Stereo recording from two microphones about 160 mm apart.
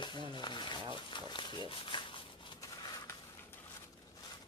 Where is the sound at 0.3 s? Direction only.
30° left (ahead or behind).